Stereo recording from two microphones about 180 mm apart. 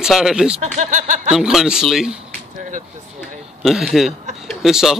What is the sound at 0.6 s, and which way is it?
Speech, 40° right (ahead or behind).